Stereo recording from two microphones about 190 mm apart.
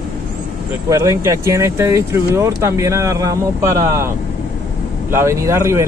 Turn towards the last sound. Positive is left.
turn(degrees=-15)  # may be behind; listen again after turning